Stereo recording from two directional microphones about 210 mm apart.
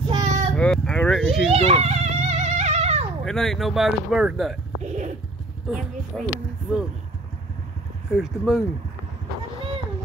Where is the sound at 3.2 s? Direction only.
Centre (ahead or behind).